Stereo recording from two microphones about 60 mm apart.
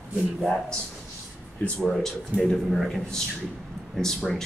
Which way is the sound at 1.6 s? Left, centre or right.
Left.